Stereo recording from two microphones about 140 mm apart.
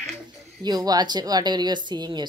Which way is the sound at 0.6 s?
30° right (ahead or behind).